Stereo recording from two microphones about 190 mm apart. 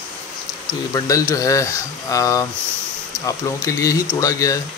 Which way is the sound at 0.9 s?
15° left (ahead or behind).